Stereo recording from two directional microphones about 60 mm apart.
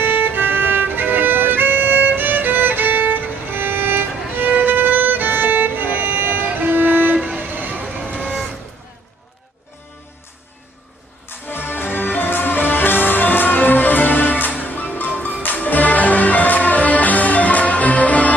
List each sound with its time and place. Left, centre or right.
0.0 s violin: right
7.3 s vehicle: right
11.2 s music: left